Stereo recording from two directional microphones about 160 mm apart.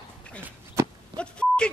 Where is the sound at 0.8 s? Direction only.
15° right (ahead or behind).